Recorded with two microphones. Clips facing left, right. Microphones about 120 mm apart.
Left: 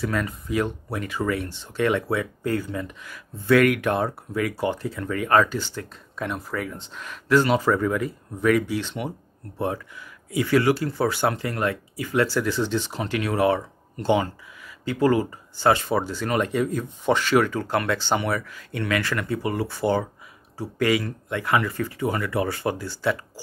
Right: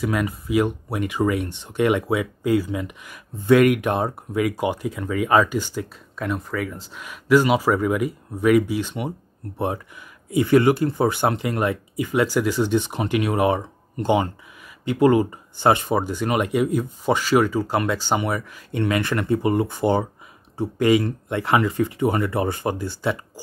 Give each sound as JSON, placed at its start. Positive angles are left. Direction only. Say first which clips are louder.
{"t": 0.0, "sound": "speech", "louder": "right 3 dB", "side_deg": -10}
{"t": 6.1, "sound": "speech", "louder": "right 3 dB", "side_deg": 0}
{"t": 10.3, "sound": "speech", "louder": "right 4 dB", "side_deg": -20}